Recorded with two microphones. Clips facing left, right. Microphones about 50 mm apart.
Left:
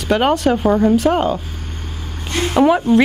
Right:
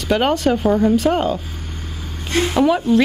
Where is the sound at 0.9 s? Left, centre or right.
Centre.